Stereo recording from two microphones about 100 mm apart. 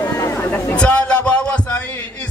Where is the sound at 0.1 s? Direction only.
30° left (ahead or behind).